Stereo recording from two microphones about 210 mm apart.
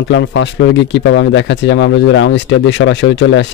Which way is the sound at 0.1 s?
60° left (ahead or behind).